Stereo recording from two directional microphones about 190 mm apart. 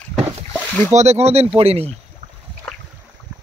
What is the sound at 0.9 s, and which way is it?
Speech, 35° right (ahead or behind).